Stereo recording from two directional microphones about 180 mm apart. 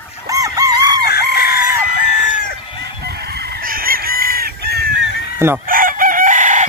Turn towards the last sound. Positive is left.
turn(degrees=-45)  # may be behind; listen again after turning